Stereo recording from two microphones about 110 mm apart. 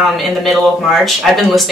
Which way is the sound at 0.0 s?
Centre (ahead or behind).